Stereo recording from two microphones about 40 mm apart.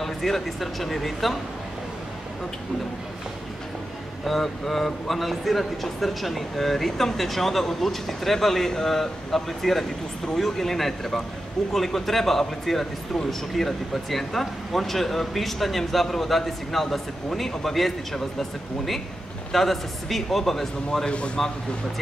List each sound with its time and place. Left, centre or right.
0.0 s speech: centre
4.2 s speech: centre
19.5 s speech: centre
21.0 s a man's voice: left